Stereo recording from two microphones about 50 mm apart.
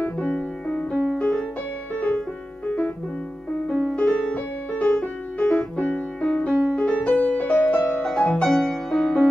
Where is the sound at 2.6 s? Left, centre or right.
Left.